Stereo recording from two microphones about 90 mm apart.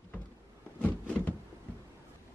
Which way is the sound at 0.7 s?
20° left (ahead or behind).